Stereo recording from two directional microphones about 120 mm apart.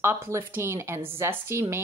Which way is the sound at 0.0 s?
20° right (ahead or behind).